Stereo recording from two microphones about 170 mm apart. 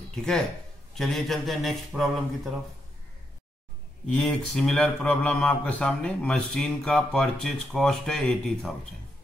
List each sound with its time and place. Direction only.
0.1 s speech: 5° left (ahead or behind)
4.2 s speech: centre (ahead or behind)